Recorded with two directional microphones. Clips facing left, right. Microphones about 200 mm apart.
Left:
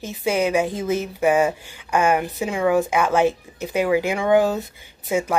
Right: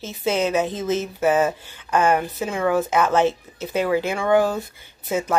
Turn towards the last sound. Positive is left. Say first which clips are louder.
# left 1 dB
turn(degrees=15)  # may be behind; listen again after turning